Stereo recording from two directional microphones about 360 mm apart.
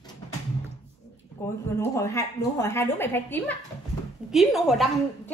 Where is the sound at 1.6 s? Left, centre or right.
Centre.